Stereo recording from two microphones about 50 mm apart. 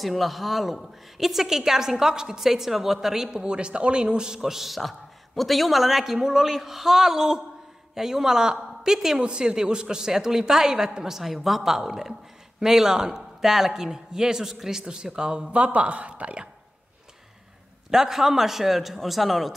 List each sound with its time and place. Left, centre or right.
0.0 s a woman's voice: centre; by 16.4 s right
17.9 s a man's voice: centre